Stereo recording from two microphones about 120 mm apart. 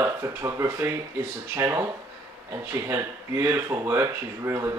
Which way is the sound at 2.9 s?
25° right (ahead or behind).